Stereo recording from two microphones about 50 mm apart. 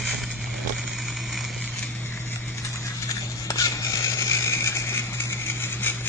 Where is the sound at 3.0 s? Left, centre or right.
Left.